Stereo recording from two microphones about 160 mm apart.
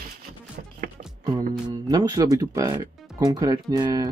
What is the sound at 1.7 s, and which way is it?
Speech, 25° right (ahead or behind).